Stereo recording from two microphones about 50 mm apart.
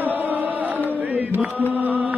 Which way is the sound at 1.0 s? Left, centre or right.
Right.